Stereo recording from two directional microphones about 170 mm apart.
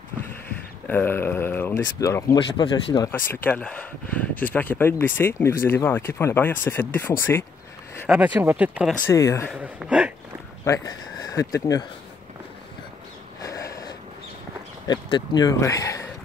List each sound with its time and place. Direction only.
0.8 s speech: 10° left (ahead or behind)
2.3 s speech: 25° left (ahead or behind)
3.3 s speech: 10° left (ahead or behind)
8.1 s speech: 10° right (ahead or behind)
9.0 s speech: 15° left (ahead or behind)
9.5 s a man's voice: 5° right (ahead or behind)
10.6 s speech: 20° left (ahead or behind)
13.4 s sniff: 20° left (ahead or behind)
14.9 s speech: 25° left (ahead or behind)